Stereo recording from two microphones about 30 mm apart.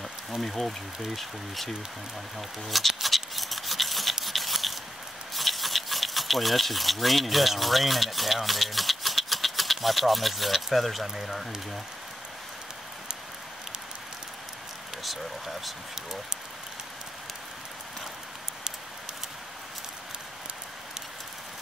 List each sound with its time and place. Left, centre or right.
0.4 s speech: centre
3.0 s a sound: centre
5.3 s speech: centre
15.0 s speech: centre
15.9 s speech: centre